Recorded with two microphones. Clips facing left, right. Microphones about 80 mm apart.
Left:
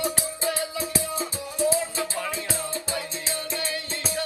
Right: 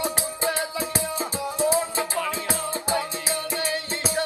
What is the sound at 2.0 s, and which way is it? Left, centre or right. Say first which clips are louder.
Music: right 3 dB; right.